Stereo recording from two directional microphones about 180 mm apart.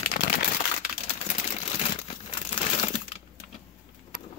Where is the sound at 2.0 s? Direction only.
35° left (ahead or behind).